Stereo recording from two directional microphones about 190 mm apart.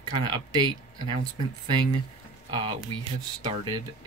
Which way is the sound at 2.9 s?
25° right (ahead or behind).